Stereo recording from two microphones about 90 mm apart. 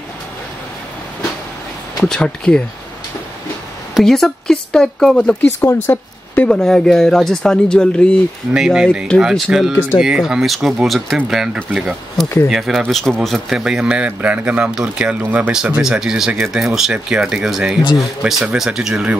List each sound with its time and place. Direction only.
2.0 s speech: 10° left (ahead or behind)
4.0 s speech: 5° left (ahead or behind)
5.6 s speech: 25° left (ahead or behind)
6.4 s speech: 5° left (ahead or behind)
8.5 s a man's voice: 5° right (ahead or behind)